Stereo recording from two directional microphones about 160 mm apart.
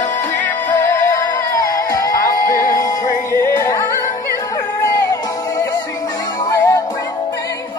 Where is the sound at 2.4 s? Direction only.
60° left (ahead or behind).